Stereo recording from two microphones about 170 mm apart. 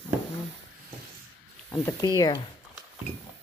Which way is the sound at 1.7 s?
15° left (ahead or behind).